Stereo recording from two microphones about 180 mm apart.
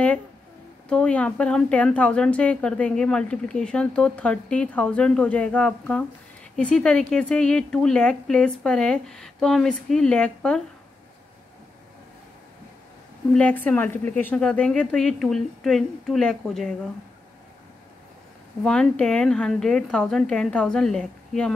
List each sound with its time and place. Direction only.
0.8 s a woman's voice: 5° left (ahead or behind)
13.3 s a woman's voice: 10° left (ahead or behind)
18.6 s a woman's voice: 5° left (ahead or behind)